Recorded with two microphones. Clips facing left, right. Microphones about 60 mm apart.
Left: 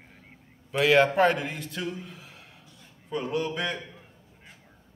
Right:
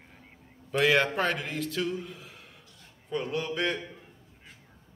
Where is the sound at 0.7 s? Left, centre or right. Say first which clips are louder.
Left 3 dB; centre.